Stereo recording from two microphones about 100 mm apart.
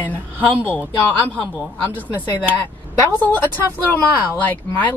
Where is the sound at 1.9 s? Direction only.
15° right (ahead or behind).